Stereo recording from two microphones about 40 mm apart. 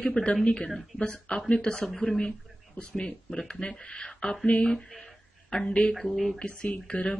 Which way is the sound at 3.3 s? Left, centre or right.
Centre.